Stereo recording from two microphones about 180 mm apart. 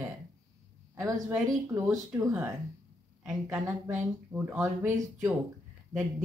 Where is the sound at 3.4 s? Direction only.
15° right (ahead or behind).